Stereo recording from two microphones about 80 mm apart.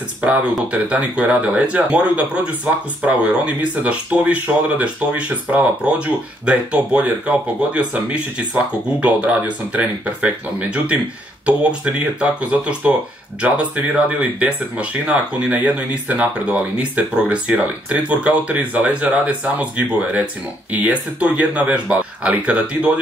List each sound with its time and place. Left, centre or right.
0.2 s speech: centre